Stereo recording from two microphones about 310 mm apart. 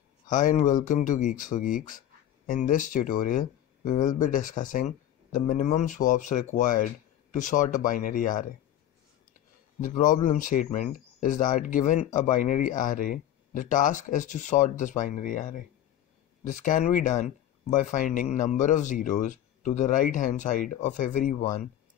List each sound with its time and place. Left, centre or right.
0.3 s speech: left
9.8 s speech: left